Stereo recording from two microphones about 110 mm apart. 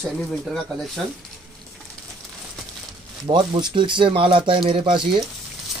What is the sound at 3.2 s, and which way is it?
Speech, 45° right (ahead or behind).